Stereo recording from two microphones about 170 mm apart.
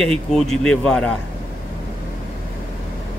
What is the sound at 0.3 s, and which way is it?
Speech, 5° left (ahead or behind).